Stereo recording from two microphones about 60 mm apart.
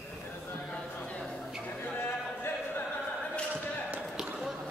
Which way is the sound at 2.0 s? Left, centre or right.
Left.